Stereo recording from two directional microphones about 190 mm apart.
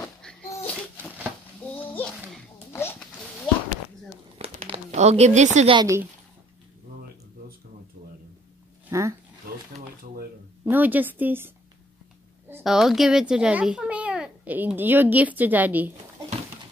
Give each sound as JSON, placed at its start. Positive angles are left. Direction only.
{"t": 0.0, "sound": "a sound", "side_deg": 10}
{"t": 1.8, "sound": "a sound", "side_deg": 10}
{"t": 4.4, "sound": "crumpling", "side_deg": -30}
{"t": 5.8, "sound": "a woman's voice", "side_deg": -15}
{"t": 8.9, "sound": "dog", "side_deg": -15}
{"t": 10.6, "sound": "a woman's voice", "side_deg": -10}